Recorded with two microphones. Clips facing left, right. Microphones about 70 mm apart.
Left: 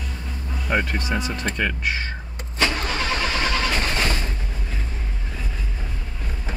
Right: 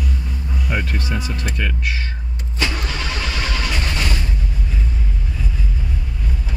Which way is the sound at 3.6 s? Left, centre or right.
Left.